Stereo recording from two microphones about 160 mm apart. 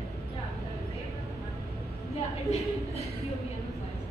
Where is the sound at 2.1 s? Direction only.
40° left (ahead or behind).